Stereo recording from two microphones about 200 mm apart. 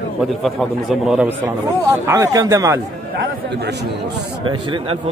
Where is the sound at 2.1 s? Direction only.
15° right (ahead or behind).